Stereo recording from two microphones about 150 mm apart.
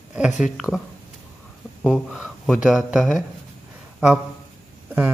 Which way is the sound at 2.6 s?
5° right (ahead or behind).